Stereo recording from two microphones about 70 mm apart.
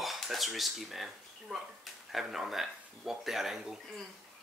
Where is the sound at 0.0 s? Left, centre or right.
Centre.